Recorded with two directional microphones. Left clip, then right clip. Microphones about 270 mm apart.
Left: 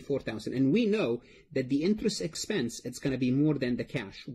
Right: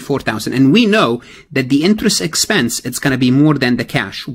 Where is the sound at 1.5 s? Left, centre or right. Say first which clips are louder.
Right 15 dB; right.